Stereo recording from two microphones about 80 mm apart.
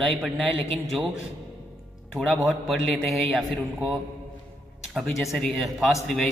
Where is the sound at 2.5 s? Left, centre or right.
Centre.